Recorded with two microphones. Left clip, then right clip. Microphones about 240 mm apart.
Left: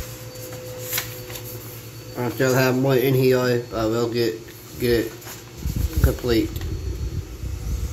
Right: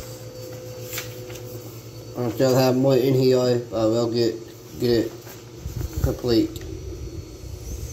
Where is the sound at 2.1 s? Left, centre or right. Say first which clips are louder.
Right 1 dB; centre.